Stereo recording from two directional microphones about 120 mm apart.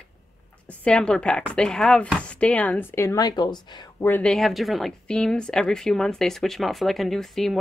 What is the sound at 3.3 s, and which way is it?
Speech, 35° left (ahead or behind).